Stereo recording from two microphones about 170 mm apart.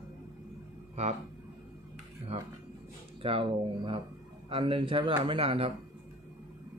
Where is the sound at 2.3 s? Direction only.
35° right (ahead or behind).